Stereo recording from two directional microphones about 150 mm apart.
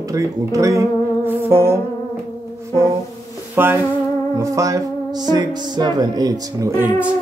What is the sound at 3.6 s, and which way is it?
Speech, 15° right (ahead or behind).